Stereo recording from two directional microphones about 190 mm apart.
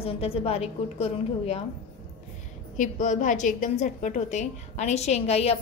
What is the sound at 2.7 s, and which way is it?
A woman's voice, 40° left (ahead or behind).